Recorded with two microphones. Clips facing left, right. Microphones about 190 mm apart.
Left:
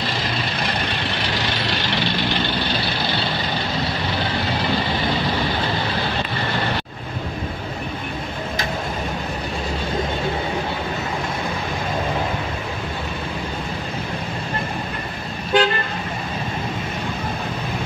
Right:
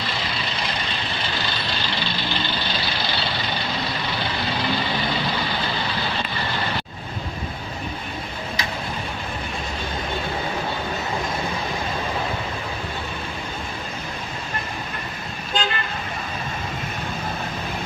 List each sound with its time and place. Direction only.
15.5 s car: 60° left (ahead or behind)